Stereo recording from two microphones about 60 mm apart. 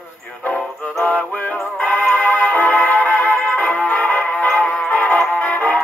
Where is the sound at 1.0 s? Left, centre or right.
Left.